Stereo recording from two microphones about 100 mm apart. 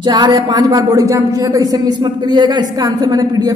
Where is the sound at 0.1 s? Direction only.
45° right (ahead or behind).